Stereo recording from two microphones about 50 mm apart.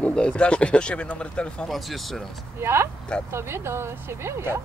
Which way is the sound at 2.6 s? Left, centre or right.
Right.